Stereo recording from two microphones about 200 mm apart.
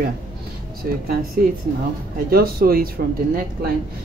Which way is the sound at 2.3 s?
50° right (ahead or behind).